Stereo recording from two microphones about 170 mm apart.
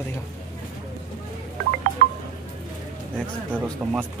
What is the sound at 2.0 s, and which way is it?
Wind chime, 55° right (ahead or behind).